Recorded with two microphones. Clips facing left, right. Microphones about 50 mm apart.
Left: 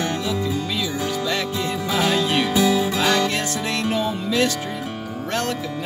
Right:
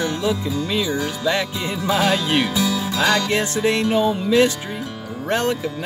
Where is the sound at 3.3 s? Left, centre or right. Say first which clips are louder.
Right 5 dB; right.